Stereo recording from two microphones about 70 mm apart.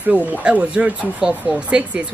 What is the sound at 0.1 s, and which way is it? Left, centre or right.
Speech, centre.